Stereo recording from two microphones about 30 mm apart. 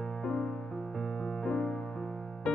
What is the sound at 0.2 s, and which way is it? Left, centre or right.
Music, left.